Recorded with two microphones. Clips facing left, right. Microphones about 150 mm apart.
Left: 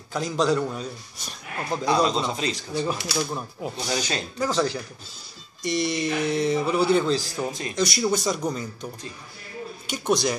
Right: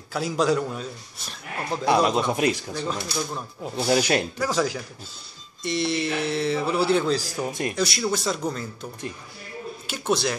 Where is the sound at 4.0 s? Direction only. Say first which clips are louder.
Right 7 dB; 60° right (ahead or behind).